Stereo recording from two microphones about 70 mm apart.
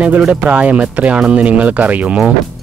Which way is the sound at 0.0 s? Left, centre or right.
Centre.